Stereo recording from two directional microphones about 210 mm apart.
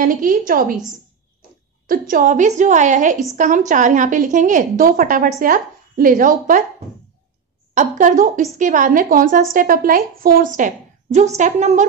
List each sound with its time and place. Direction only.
0.0 s a woman's voice: 40° right (ahead or behind)
1.9 s a woman's voice: 40° right (ahead or behind)
7.7 s a woman's voice: 35° right (ahead or behind)